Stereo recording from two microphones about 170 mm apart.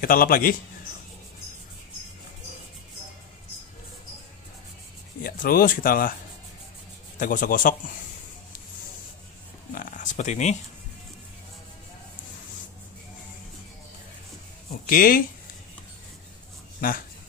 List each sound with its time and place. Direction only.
0.0 s a man's voice: 55° left (ahead or behind)
5.2 s speech: 60° left (ahead or behind)
7.2 s a man's voice: 55° left (ahead or behind)
9.7 s a sound: 55° left (ahead or behind)
14.7 s a sound: 55° left (ahead or behind)
16.8 s a man's voice: 60° left (ahead or behind)